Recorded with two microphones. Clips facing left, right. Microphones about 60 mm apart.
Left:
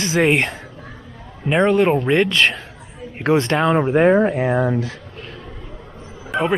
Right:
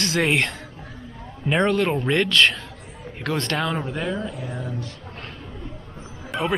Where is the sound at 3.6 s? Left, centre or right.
Left.